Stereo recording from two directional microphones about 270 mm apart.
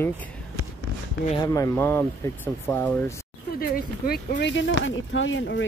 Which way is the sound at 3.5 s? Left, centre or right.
Left.